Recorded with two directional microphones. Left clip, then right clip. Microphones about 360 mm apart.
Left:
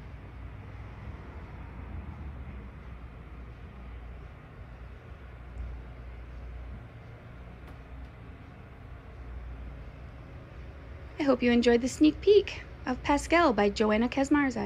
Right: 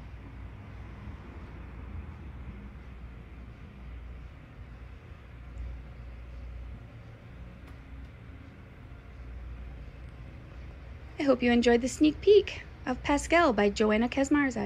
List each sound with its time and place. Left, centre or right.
11.1 s a woman's voice: centre